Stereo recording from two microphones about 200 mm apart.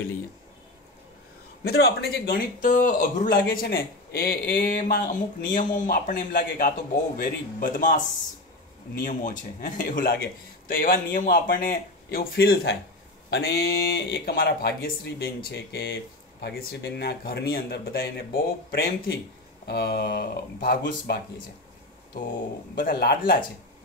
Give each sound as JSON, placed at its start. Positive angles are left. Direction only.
{"t": 1.6, "sound": "speech", "side_deg": 55}
{"t": 22.8, "sound": "speech", "side_deg": 50}